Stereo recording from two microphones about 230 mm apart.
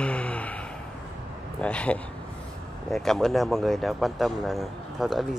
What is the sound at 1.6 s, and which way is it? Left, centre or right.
Speech, centre.